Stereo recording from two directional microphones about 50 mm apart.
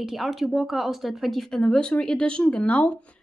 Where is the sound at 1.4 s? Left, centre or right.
Centre.